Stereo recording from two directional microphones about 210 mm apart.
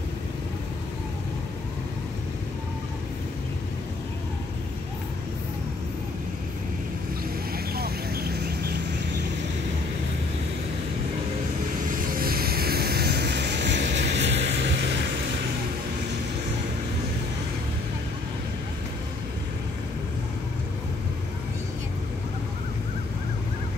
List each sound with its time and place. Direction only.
7.5 s vehicle: 45° right (ahead or behind)
11.9 s vehicle: 45° right (ahead or behind)